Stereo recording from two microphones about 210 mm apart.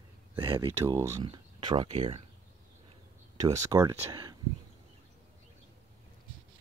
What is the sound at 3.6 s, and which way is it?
Speech, 15° right (ahead or behind).